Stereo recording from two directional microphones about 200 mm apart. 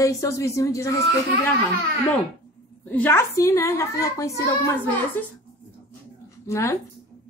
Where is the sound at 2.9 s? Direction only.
10° left (ahead or behind).